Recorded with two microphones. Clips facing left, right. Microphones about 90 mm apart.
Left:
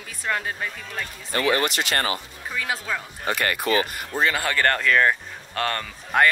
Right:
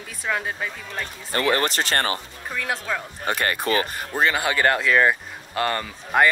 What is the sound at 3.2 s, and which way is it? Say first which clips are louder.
Speech: even; 30° right (ahead or behind).